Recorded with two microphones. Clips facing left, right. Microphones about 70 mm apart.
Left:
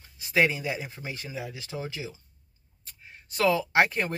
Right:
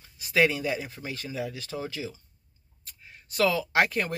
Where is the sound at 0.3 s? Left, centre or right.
Centre.